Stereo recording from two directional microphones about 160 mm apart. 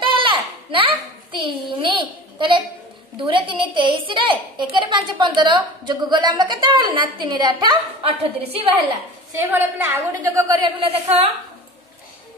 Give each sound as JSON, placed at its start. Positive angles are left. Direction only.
{"t": 0.0, "sound": "a sound", "side_deg": -30}
{"t": 3.2, "sound": "a woman's voice", "side_deg": -30}
{"t": 9.3, "sound": "a woman's voice", "side_deg": -15}
{"t": 10.8, "sound": "a woman's voice", "side_deg": -40}